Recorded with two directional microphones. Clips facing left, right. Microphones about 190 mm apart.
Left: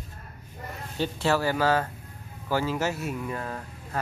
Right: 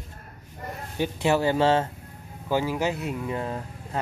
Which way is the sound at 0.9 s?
15° right (ahead or behind).